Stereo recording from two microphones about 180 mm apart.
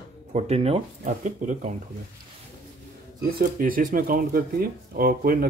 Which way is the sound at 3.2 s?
55° right (ahead or behind).